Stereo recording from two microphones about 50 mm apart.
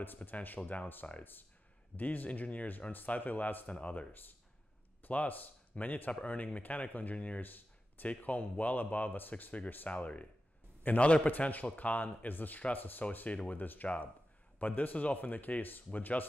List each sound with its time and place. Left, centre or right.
0.0 s speech: left
3.7 s speech: left
11.2 s speech: left